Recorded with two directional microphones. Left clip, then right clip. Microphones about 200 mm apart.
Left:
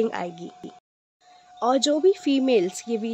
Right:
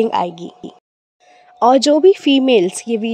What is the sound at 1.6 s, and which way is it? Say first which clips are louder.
Speech: right 10 dB; 35° right (ahead or behind).